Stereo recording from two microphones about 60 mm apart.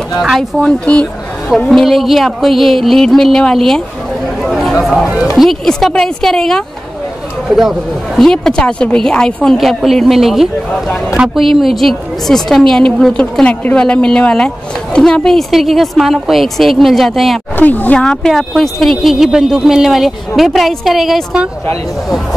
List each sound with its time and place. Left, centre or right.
0.4 s a woman's voice: centre
4.4 s a sound: centre
5.4 s a woman's voice: centre
7.4 s speech: centre
8.2 s a woman's voice: centre
9.6 s speech: centre
13.2 s a woman's voice: centre
17.6 s speech: left
17.9 s speech: centre